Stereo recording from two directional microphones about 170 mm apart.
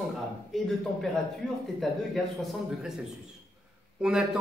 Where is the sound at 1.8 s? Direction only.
Centre (ahead or behind).